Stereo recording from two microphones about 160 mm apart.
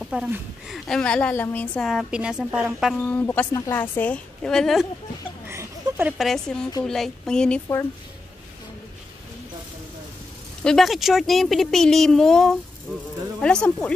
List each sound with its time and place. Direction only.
0.0 s a woman's voice: 5° right (ahead or behind)
3.1 s a woman's voice: 10° left (ahead or behind)
5.5 s a sound: 15° right (ahead or behind)
6.1 s a woman's voice: centre (ahead or behind)
10.6 s a woman's voice: centre (ahead or behind)